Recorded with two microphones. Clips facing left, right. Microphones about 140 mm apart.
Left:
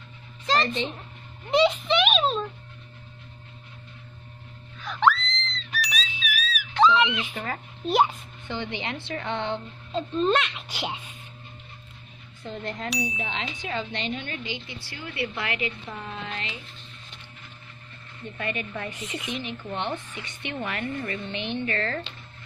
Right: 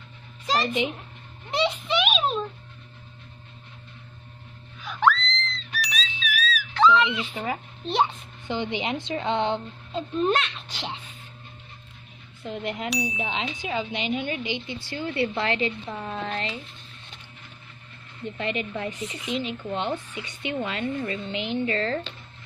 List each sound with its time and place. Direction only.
0.5 s a child's voice: 10° right (ahead or behind)
4.8 s screaming: centre (ahead or behind)
5.7 s a sound: centre (ahead or behind)
6.5 s a sound: 20° left (ahead or behind)
7.3 s speech: 15° right (ahead or behind)
7.8 s a child's voice: 5° left (ahead or behind)
8.5 s a woman's voice: 15° right (ahead or behind)
10.4 s a child's voice: 10° left (ahead or behind)
12.9 s a child's voice: centre (ahead or behind)
13.2 s speech: 15° right (ahead or behind)
14.9 s a woman's voice: 30° right (ahead or behind)
18.4 s a woman's voice: 20° right (ahead or behind)